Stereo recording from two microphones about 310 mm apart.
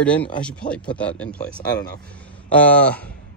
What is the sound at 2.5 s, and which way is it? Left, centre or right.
Speech, centre.